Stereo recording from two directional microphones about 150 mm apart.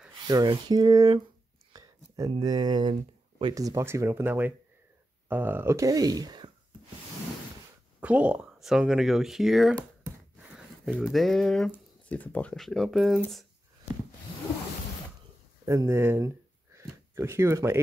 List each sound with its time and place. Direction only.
0.3 s speech: 25° right (ahead or behind)
1.7 s a sound: 25° right (ahead or behind)
2.3 s speech: 25° right (ahead or behind)
3.5 s speech: 20° right (ahead or behind)
8.0 s speech: 10° right (ahead or behind)
15.6 s speech: 20° right (ahead or behind)